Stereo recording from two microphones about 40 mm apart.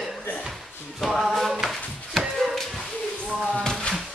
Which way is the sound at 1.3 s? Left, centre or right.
Centre.